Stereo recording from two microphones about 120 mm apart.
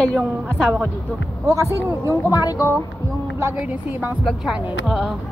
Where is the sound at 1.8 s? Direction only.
20° right (ahead or behind).